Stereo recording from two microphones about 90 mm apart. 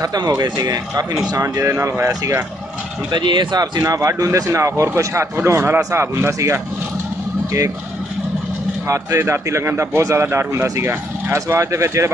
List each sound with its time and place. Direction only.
0.0 s speech: 45° right (ahead or behind)
1.3 s speech: 35° right (ahead or behind)
3.1 s speech: 55° right (ahead or behind); by 6.6 s 30° right (ahead or behind)
8.8 s a man's voice: 35° right (ahead or behind)